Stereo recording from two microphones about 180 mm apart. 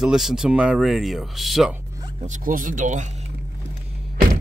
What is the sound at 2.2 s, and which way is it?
Speech, 45° right (ahead or behind).